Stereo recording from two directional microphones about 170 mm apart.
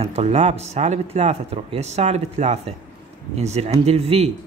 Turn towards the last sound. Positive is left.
turn(degrees=-35)  # may be behind; listen again after turning